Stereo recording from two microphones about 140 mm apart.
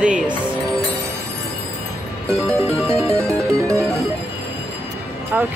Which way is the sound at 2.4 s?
20° right (ahead or behind).